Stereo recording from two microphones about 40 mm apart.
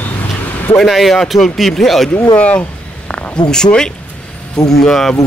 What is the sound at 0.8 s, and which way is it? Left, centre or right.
Speech, centre.